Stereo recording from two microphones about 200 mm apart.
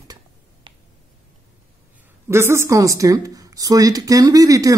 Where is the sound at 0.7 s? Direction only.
25° right (ahead or behind).